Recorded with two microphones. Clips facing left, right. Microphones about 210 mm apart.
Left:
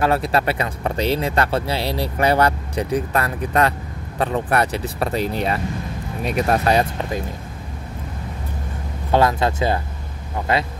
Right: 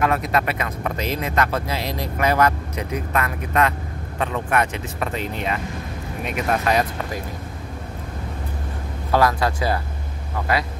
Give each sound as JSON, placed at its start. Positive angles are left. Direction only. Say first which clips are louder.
{"t": 0.0, "sound": "speech", "louder": "left 2 dB", "side_deg": 30}
{"t": 9.1, "sound": "speech", "louder": "left 2 dB", "side_deg": 25}